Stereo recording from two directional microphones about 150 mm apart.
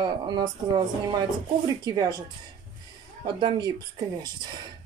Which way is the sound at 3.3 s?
30° right (ahead or behind).